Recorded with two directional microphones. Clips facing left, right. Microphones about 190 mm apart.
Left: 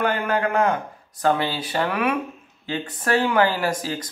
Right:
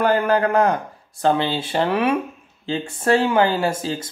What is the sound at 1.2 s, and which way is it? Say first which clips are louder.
Speech: right 2 dB; 25° right (ahead or behind).